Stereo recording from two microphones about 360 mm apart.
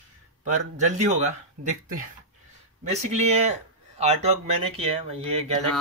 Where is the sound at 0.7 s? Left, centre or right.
Centre.